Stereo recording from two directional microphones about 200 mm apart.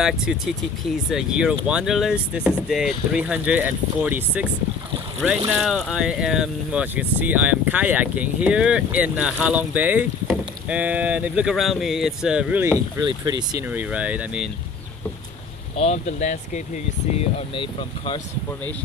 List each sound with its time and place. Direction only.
0.0 s speech: 5° right (ahead or behind); by 13.7 s 20° right (ahead or behind)
13.7 s speech: 5° right (ahead or behind)
15.7 s speech: 30° left (ahead or behind)
17.2 s speech: 25° left (ahead or behind)